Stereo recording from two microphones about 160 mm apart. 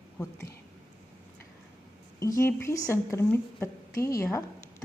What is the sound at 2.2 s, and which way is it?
A woman's voice, 20° left (ahead or behind).